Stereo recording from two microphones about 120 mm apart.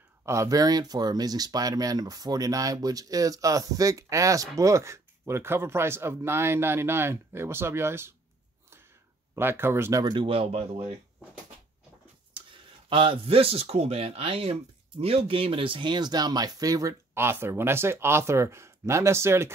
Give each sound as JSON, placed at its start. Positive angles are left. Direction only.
{"t": 0.2, "sound": "speech", "side_deg": -25}
{"t": 9.3, "sound": "speech", "side_deg": -20}
{"t": 10.0, "sound": "speech", "side_deg": -45}
{"t": 12.9, "sound": "speech", "side_deg": -45}